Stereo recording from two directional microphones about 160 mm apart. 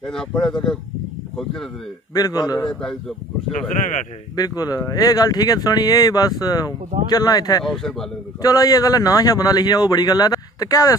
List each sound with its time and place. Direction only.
0.0 s speech: 5° left (ahead or behind)
2.1 s speech: 25° left (ahead or behind)
2.6 s speech: 5° left (ahead or behind)
4.4 s speech: 25° left (ahead or behind)
7.6 s speech: centre (ahead or behind)
8.4 s speech: 20° left (ahead or behind)